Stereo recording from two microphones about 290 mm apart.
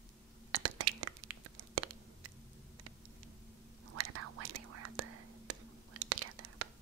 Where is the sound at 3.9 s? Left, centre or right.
Right.